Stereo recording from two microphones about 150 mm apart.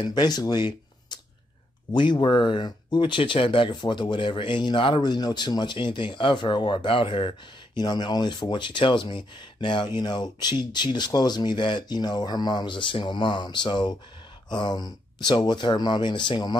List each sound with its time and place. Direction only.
0.0 s speech: 30° left (ahead or behind)